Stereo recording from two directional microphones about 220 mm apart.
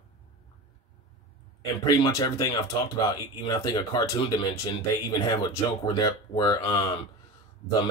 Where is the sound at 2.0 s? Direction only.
15° left (ahead or behind).